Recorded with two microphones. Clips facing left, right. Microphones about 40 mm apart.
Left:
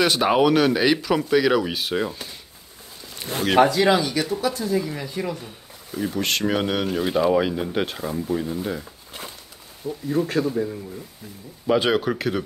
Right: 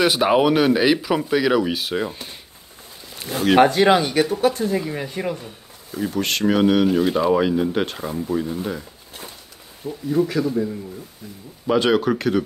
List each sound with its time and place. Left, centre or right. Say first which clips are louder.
0.0 s speech: right 2 dB; centre
3.5 s speech: right 2 dB; right
5.9 s speech: right 1 dB; centre
9.8 s speech: even; right
10.4 s a man's voice: right 1 dB; left
11.6 s speech: right 2 dB; centre